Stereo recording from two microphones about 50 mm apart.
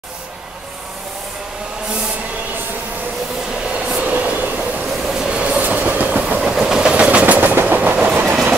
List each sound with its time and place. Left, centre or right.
3.6 s train: centre
5.0 s train: centre
5.6 s train: right
6.5 s train: centre; by 8.1 s right